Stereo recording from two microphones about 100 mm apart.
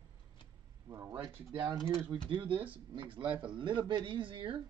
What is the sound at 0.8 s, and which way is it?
Speech, 30° right (ahead or behind).